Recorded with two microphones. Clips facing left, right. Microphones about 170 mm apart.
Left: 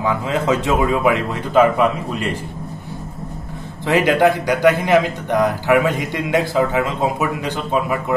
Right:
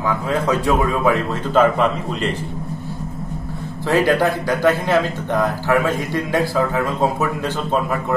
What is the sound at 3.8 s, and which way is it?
A man's voice, 20° left (ahead or behind).